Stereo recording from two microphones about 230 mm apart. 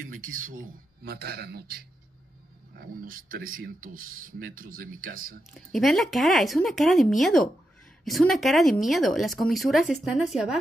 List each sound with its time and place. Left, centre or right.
0.4 s a man's voice: right
5.5 s speech: centre